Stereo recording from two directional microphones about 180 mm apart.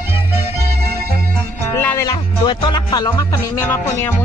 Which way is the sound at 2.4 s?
25° left (ahead or behind).